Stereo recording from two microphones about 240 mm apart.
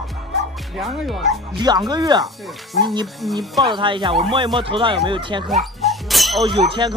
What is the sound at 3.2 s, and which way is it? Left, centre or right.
Speech, centre.